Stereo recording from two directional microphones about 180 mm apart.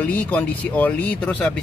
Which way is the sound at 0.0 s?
10° left (ahead or behind).